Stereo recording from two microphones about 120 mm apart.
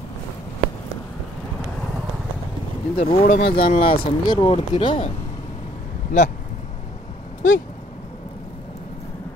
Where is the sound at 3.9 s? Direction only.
40° left (ahead or behind).